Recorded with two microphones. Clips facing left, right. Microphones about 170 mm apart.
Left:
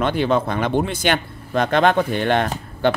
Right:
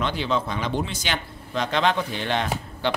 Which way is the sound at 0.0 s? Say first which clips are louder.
Left 6 dB; 55° left (ahead or behind).